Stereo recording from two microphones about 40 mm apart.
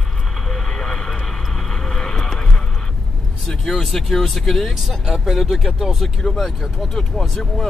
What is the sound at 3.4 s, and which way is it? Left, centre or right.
Speech, centre.